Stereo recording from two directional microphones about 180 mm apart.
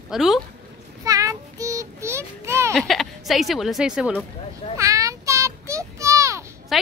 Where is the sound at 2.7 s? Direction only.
Centre (ahead or behind).